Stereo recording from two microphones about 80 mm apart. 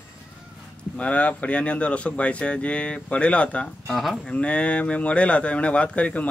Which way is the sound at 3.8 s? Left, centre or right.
Centre.